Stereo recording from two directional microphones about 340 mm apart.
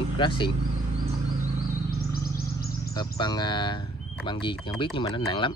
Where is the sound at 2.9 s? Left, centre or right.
Centre.